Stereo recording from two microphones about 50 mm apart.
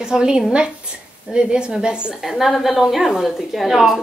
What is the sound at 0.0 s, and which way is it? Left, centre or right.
A woman's voice, centre.